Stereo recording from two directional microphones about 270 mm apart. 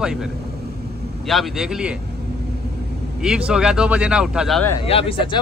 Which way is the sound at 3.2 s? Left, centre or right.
Centre.